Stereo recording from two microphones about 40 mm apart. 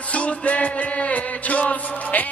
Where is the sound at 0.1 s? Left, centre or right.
Left.